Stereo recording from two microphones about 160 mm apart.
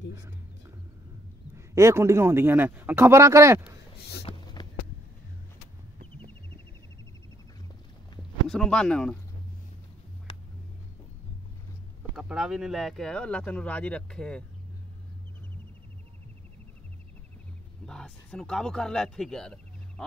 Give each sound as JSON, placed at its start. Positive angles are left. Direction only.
{"t": 1.8, "sound": "speech", "side_deg": -20}
{"t": 4.2, "sound": "a sound", "side_deg": 35}
{"t": 8.5, "sound": "speech", "side_deg": 5}
{"t": 10.3, "sound": "music", "side_deg": 35}
{"t": 12.2, "sound": "speech", "side_deg": -5}
{"t": 17.8, "sound": "speech", "side_deg": 5}